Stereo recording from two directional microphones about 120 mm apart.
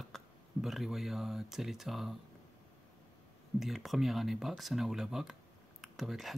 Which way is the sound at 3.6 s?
Centre (ahead or behind).